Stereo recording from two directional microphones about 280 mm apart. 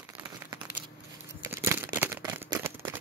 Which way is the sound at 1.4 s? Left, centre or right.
Centre.